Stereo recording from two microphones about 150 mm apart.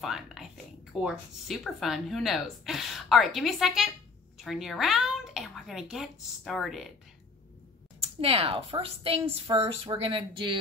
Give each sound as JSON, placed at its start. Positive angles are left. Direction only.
{"t": 0.0, "sound": "whispering", "side_deg": 0}
{"t": 1.0, "sound": "a woman's voice", "side_deg": 0}
{"t": 8.0, "sound": "speech", "side_deg": -40}